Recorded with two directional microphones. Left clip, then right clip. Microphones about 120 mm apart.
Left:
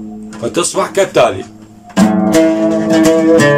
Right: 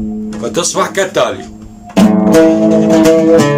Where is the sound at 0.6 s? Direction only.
10° left (ahead or behind).